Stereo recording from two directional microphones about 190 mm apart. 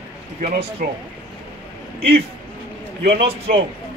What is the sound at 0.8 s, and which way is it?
Speech, 50° right (ahead or behind).